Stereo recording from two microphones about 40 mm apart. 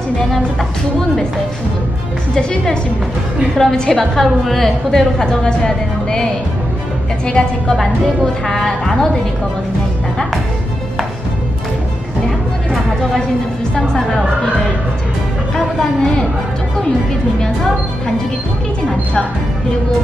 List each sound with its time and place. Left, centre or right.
2.3 s a woman's voice: centre
5.2 s a woman's voice: centre
7.2 s a woman's voice: left
15.5 s music: centre